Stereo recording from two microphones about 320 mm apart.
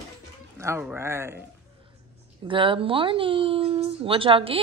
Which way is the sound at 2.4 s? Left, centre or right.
Centre.